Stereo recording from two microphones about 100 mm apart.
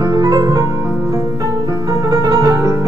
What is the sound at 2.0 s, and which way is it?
Music, 35° right (ahead or behind).